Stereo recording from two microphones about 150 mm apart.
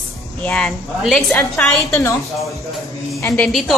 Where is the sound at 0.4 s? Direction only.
5° left (ahead or behind).